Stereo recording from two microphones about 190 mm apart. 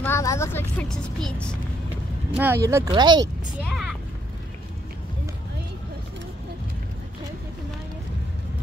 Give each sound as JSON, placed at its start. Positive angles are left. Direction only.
{"t": 0.0, "sound": "vehicle", "side_deg": 15}
{"t": 2.3, "sound": "speech", "side_deg": -10}
{"t": 3.6, "sound": "a sound", "side_deg": 0}